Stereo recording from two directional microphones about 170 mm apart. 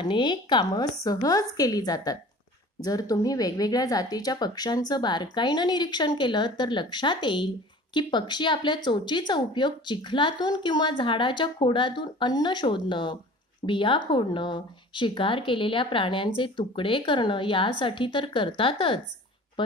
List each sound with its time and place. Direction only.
0.0 s speech: 25° left (ahead or behind)